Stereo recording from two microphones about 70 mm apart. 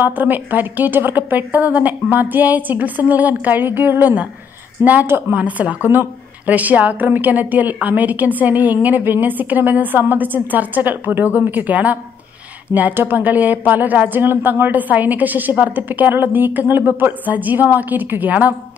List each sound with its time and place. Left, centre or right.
0.0 s a woman's voice: right